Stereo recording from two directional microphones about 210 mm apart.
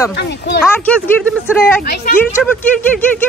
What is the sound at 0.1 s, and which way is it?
Speech, 55° left (ahead or behind).